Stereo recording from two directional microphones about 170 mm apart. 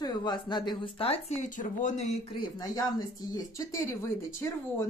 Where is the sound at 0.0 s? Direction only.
25° left (ahead or behind); by 2.2 s 40° left (ahead or behind).